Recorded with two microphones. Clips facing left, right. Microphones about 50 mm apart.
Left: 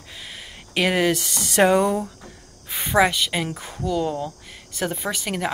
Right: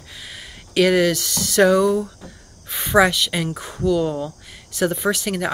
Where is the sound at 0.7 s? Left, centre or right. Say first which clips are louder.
Right 4 dB; centre.